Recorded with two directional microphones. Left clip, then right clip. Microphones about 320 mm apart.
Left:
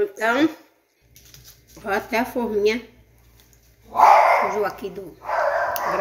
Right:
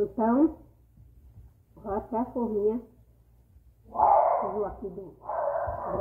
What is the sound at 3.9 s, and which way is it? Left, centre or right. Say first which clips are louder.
Speech: left 8 dB; left.